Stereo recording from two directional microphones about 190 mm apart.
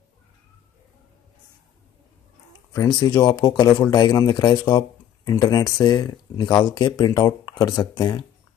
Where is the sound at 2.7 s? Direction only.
20° left (ahead or behind).